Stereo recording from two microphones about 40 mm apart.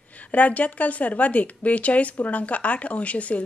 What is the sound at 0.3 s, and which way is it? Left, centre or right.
Speech, left.